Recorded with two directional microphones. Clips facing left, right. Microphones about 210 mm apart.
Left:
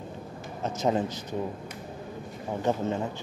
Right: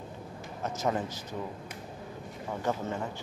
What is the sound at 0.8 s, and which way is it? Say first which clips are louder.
Speech: left 5 dB; 20° left (ahead or behind).